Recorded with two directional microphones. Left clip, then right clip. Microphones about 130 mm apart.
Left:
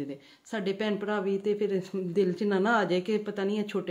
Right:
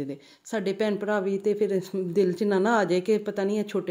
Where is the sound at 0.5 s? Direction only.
45° right (ahead or behind).